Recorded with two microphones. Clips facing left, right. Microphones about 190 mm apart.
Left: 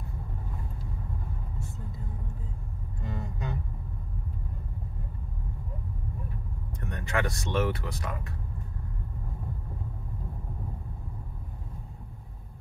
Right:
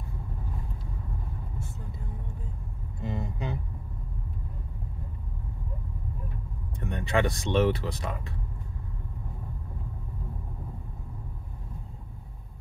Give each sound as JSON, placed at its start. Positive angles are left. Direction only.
{"t": 3.0, "sound": "vehicle", "side_deg": -20}
{"t": 6.8, "sound": "speech", "side_deg": -25}